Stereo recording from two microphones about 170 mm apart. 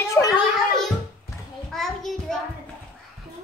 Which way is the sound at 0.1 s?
20° left (ahead or behind).